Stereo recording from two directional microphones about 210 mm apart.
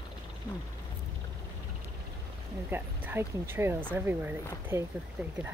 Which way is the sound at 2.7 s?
10° right (ahead or behind).